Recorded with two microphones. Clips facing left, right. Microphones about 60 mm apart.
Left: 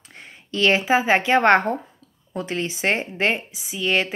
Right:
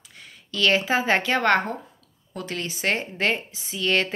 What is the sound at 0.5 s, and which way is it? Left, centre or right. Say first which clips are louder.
A woman's voice: left 3 dB; left.